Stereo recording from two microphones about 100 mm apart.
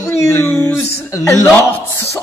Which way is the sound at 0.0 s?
25° left (ahead or behind).